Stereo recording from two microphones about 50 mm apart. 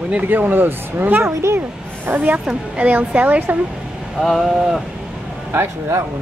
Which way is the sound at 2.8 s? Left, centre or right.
Right.